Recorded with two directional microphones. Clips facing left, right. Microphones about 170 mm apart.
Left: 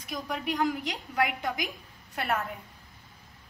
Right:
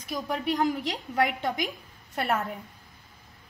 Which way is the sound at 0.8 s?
30° right (ahead or behind).